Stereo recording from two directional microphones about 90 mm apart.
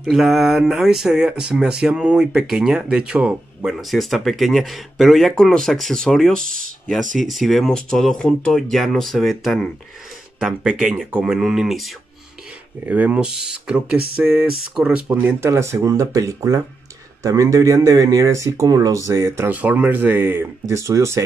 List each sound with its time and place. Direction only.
0.0 s speech: centre (ahead or behind)
3.7 s speech: centre (ahead or behind)
12.8 s speech: 15° right (ahead or behind)
15.4 s speech: 30° right (ahead or behind)
19.5 s speech: 15° right (ahead or behind); by 21.2 s 35° right (ahead or behind)